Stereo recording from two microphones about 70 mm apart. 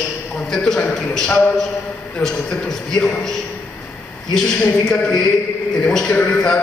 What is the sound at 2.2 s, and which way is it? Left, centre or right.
A man's voice, centre.